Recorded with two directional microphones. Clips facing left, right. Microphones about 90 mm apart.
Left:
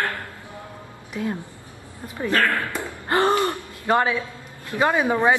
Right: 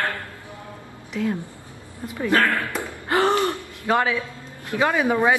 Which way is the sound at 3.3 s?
20° left (ahead or behind).